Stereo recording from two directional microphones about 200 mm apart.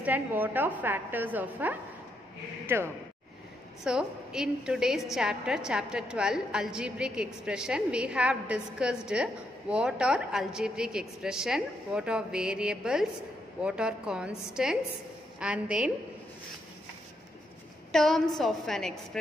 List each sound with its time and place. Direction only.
0.0 s a woman's voice: 10° right (ahead or behind)
17.9 s a woman's voice: centre (ahead or behind)